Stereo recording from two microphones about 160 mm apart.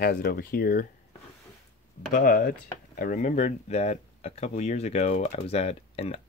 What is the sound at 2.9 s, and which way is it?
Speech, 55° left (ahead or behind).